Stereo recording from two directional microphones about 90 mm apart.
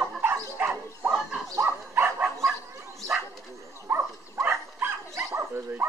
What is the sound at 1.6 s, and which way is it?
Dog, 25° right (ahead or behind).